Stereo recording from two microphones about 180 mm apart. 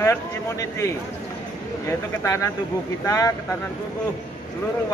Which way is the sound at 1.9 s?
15° left (ahead or behind).